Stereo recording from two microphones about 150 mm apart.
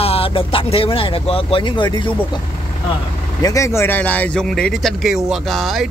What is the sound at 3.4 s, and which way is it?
Speech, 20° left (ahead or behind).